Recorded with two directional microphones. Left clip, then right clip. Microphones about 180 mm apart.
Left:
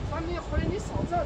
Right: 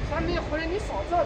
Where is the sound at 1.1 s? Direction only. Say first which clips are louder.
Right 5 dB; 45° right (ahead or behind).